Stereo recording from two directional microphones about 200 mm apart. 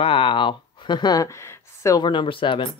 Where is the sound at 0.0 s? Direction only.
25° left (ahead or behind).